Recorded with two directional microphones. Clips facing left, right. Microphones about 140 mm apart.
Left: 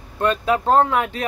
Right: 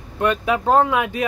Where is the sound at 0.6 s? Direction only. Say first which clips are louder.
Right 1 dB; 15° right (ahead or behind).